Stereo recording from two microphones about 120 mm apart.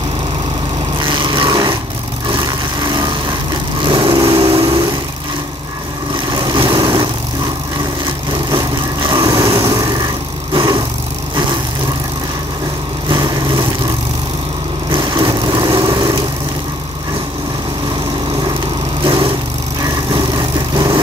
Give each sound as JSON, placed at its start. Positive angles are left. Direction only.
{"t": 1.0, "sound": "vehicle", "side_deg": -40}
{"t": 6.3, "sound": "vehicle", "side_deg": -40}
{"t": 9.1, "sound": "vehicle", "side_deg": -35}
{"t": 13.1, "sound": "vehicle", "side_deg": -35}
{"t": 14.9, "sound": "vehicle", "side_deg": -40}
{"t": 19.0, "sound": "lawn mower", "side_deg": -45}
{"t": 19.8, "sound": "vehicle", "side_deg": -35}